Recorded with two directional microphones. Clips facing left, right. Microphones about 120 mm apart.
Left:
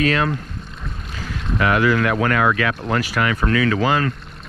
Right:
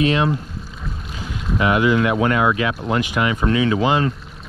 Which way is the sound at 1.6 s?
15° right (ahead or behind).